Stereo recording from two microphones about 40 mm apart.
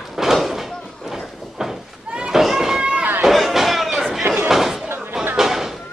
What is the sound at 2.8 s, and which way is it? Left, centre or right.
Run, right.